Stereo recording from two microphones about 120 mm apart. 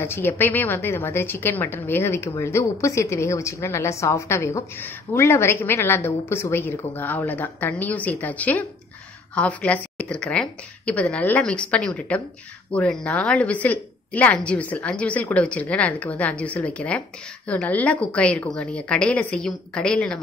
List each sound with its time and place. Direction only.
0.0 s a woman's voice: 20° left (ahead or behind)